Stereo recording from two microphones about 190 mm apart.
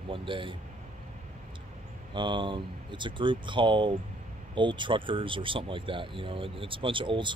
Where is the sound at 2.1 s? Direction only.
25° right (ahead or behind).